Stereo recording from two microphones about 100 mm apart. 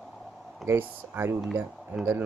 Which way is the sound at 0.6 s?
25° right (ahead or behind).